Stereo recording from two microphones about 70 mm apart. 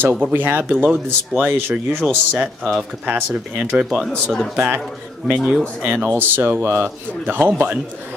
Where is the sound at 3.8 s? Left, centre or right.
Centre.